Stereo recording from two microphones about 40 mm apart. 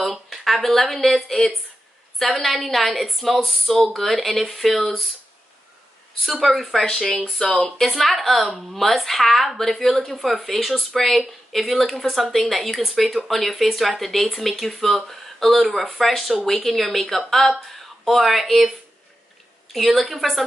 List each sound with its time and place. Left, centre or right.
0.0 s a sound: centre
1.1 s speech: centre
6.2 s speech: centre
6.7 s speech: centre
7.4 s speech: left
7.7 s speech: centre
19.7 s speech: centre